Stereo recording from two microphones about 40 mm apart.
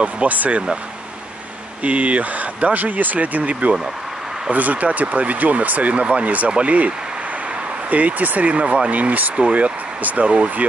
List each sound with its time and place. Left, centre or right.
0.0 s speech: right
1.8 s speech: right
7.9 s speech: right
8.9 s speech: right